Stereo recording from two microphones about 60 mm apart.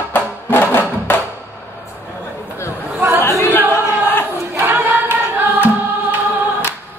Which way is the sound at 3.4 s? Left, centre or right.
Left.